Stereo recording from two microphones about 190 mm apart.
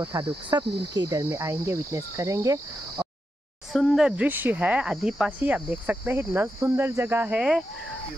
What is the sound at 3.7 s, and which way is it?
Speech, centre (ahead or behind).